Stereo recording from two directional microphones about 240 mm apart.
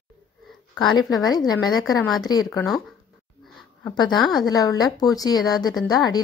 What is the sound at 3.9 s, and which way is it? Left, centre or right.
A woman's voice, centre.